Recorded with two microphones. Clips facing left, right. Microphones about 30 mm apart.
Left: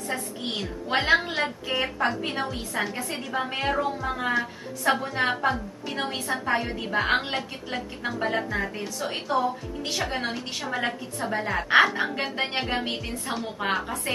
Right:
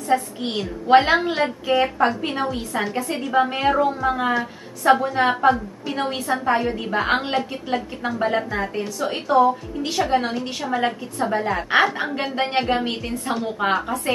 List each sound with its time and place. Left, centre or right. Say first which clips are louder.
0.1 s a woman's voice: right 12 dB; centre
4.3 s a woman's voice: right 3 dB; centre